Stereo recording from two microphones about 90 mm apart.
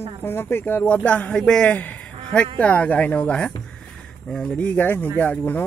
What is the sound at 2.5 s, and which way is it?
Speech, 15° left (ahead or behind).